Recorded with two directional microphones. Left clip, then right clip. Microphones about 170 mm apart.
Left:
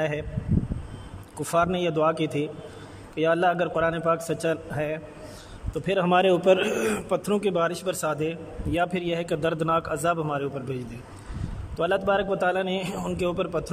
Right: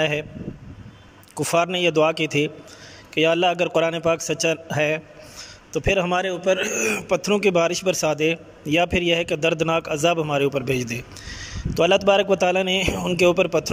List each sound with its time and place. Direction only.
0.0 s a man's voice: 5° right (ahead or behind)
1.3 s a man's voice: 10° right (ahead or behind)
6.2 s a man's voice: 20° left (ahead or behind)
6.7 s a man's voice: centre (ahead or behind)